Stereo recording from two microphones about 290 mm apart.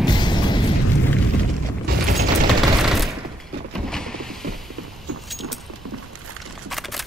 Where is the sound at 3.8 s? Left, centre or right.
Centre.